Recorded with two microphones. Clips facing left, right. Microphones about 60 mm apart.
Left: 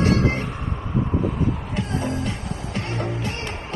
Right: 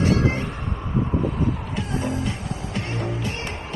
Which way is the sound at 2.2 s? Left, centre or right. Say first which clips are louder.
Even; left.